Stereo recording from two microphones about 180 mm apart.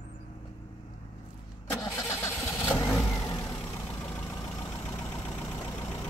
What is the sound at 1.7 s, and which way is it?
Vehicle, 15° left (ahead or behind).